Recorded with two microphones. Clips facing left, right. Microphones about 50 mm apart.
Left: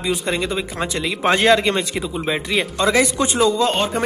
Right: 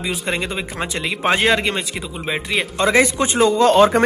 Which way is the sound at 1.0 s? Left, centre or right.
Centre.